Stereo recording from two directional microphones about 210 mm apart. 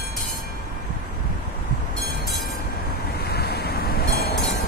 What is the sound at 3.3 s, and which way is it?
Vehicle, 50° left (ahead or behind).